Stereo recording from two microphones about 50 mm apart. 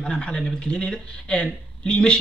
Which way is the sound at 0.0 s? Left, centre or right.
Centre.